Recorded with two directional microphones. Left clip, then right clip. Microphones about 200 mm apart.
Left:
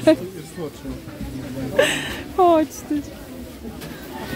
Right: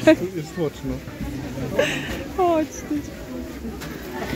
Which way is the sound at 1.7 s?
25° left (ahead or behind).